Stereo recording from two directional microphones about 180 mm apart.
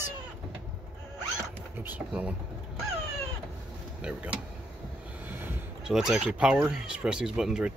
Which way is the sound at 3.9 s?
5° right (ahead or behind).